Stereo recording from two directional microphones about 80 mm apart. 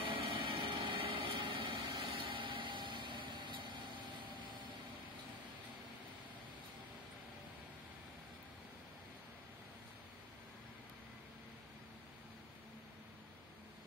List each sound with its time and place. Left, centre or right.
0.1 s vehicle: right